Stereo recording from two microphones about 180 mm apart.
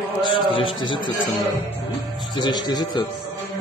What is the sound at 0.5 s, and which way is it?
Speech, 30° left (ahead or behind).